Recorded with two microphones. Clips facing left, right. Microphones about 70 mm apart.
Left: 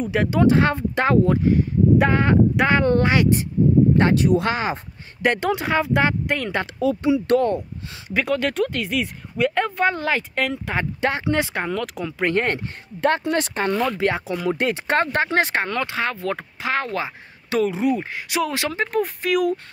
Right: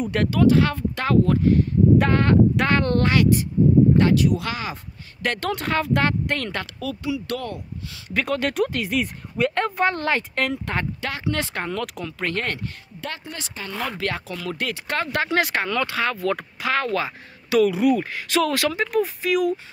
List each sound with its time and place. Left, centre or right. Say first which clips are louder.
0.3 s speech: even; left
5.2 s speech: left 4 dB; centre
6.6 s speech: left 8 dB; left
8.1 s speech: left 2 dB; centre
8.4 s speech: left 1 dB; centre
11.0 s speech: left 5 dB; left
11.3 s speech: left 3 dB; centre
12.2 s speech: left 6 dB; left
13.2 s speech: left 13 dB; left
13.9 s speech: left 6 dB; centre; by 19.6 s left